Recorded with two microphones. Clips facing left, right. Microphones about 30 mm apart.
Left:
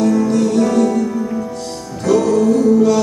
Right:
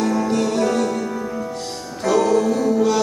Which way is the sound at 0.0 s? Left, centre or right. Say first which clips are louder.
Left 5 dB; centre.